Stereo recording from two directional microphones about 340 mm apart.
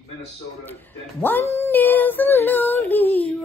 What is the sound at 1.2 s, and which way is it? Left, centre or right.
Female singing, centre.